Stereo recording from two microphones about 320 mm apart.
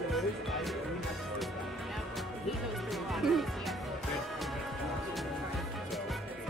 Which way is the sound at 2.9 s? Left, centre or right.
Centre.